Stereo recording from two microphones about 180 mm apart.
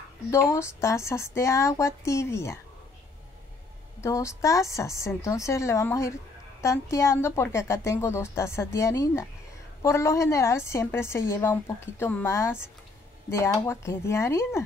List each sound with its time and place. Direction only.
0.3 s a woman's voice: 15° left (ahead or behind)
4.0 s a woman's voice: 15° left (ahead or behind)